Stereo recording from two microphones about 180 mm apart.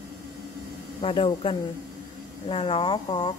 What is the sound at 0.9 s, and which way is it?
A woman's voice, 30° left (ahead or behind).